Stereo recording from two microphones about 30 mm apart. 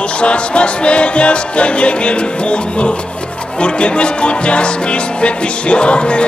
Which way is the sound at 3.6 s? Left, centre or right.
Left.